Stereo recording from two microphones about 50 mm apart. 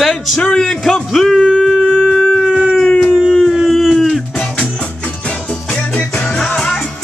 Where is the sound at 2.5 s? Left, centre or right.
Centre.